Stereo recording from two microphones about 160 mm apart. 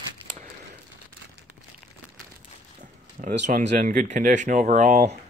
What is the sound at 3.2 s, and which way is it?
Speech, 55° right (ahead or behind).